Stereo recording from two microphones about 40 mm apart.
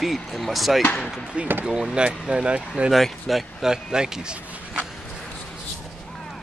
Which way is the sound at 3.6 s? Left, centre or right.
Centre.